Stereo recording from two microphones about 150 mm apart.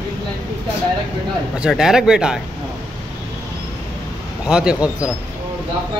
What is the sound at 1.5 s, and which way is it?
Speech, 5° right (ahead or behind).